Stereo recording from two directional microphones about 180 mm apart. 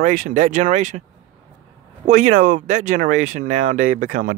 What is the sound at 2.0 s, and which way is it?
Speech, 45° right (ahead or behind).